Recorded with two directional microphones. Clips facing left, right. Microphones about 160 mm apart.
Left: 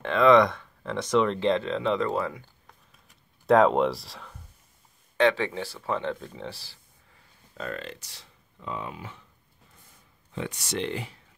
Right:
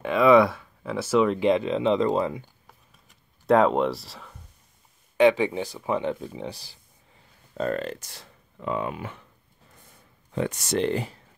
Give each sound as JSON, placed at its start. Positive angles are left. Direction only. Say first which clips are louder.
{"t": 0.0, "sound": "speech", "louder": "right 1 dB", "side_deg": -10}
{"t": 3.4, "sound": "speech", "louder": "even", "side_deg": 0}
{"t": 5.1, "sound": "speech", "louder": "right 4 dB", "side_deg": -15}
{"t": 7.5, "sound": "speech", "louder": "right 8 dB", "side_deg": -45}
{"t": 10.3, "sound": "speech", "louder": "right 6 dB", "side_deg": -45}